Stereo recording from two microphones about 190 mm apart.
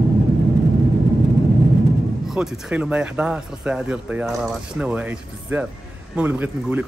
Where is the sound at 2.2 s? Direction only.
Centre (ahead or behind).